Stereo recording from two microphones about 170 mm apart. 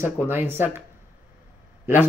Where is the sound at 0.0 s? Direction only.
15° right (ahead or behind).